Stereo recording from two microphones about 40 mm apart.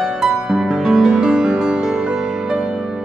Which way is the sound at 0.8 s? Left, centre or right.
Centre.